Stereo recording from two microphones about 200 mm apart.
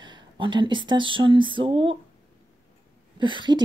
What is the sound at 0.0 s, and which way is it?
Speech, 20° right (ahead or behind).